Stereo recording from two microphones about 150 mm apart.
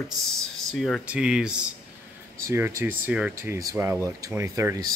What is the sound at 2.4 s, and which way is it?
Speech, 15° right (ahead or behind).